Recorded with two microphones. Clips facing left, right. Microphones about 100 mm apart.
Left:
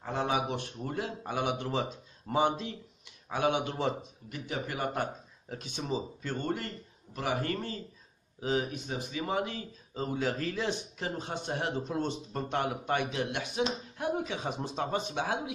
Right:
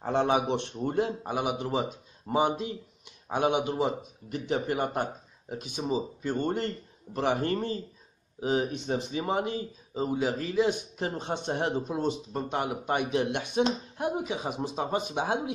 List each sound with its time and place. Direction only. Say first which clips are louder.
0.0 s speech: right 5 dB; 30° right (ahead or behind)
1.2 s a man's voice: right 2 dB; 15° right (ahead or behind)
4.3 s a man's voice: right 7 dB; 30° right (ahead or behind)